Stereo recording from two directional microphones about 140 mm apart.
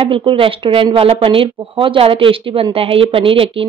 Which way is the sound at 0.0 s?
35° right (ahead or behind).